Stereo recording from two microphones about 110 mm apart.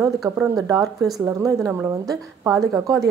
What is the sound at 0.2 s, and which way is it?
A woman's voice, 35° right (ahead or behind).